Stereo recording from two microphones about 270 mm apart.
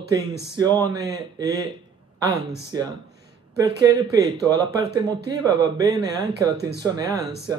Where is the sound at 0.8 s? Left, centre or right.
Centre.